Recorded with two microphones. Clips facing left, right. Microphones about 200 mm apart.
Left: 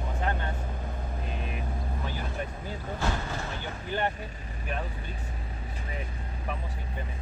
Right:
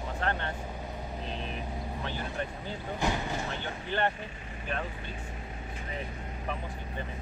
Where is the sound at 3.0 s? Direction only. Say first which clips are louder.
Right 2 dB; 15° right (ahead or behind).